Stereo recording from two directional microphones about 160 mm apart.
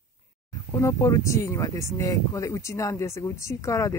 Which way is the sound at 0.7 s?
20° left (ahead or behind).